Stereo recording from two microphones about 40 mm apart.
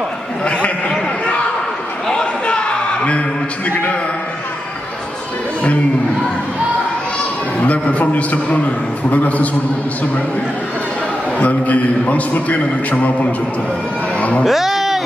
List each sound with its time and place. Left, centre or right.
0.5 s a man's voice: left
2.0 s a sound: left
7.6 s a man's voice: left
11.3 s a man's voice: left
14.1 s music: left
14.4 s a sound: centre